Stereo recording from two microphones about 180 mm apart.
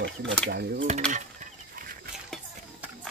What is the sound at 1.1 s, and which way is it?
Chicken, 45° right (ahead or behind).